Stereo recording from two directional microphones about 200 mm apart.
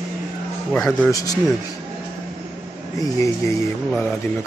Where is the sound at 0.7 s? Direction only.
5° left (ahead or behind).